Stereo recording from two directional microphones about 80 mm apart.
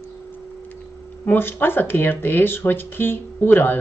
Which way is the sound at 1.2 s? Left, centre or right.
Left.